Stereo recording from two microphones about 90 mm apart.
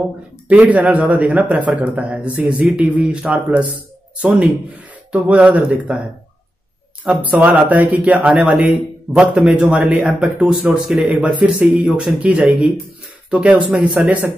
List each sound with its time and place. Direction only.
0.5 s a man's voice: 15° right (ahead or behind)
7.2 s a man's voice: 15° right (ahead or behind)